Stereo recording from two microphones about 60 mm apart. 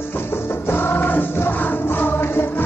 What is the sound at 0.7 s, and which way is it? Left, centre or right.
Music, left.